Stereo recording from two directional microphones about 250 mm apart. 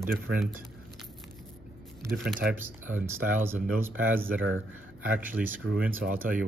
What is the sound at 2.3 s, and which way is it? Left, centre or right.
Speech, centre.